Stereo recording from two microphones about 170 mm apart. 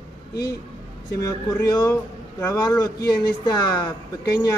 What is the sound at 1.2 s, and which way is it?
A man's voice, 20° left (ahead or behind).